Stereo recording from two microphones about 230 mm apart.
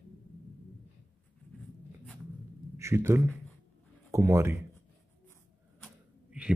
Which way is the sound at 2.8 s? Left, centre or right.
Centre.